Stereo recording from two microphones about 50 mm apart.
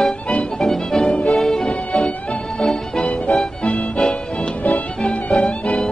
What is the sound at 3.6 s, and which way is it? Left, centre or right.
Music, left.